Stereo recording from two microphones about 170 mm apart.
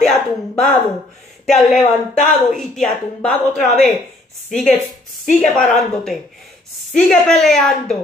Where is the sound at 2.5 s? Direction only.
Centre (ahead or behind).